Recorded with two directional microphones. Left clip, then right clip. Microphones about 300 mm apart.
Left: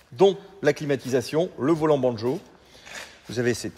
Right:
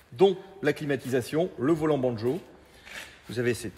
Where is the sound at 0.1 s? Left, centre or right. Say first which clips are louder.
Left 3 dB; left.